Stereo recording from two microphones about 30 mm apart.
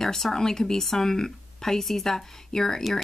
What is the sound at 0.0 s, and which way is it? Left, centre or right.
Speech, centre.